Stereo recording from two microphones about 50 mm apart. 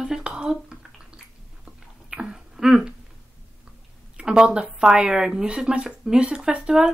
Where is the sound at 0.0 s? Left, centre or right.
Centre.